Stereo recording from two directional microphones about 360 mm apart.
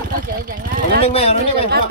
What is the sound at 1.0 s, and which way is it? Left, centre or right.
Speech, centre.